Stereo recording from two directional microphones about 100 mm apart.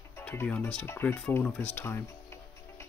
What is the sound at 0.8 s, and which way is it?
Speech, 25° left (ahead or behind).